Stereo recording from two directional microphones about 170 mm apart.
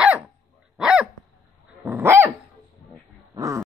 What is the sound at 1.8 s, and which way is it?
Dog, 15° right (ahead or behind).